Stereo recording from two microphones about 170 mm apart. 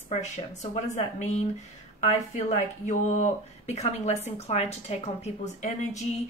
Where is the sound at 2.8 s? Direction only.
45° left (ahead or behind).